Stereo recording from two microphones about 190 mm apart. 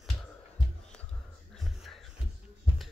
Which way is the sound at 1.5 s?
Centre (ahead or behind).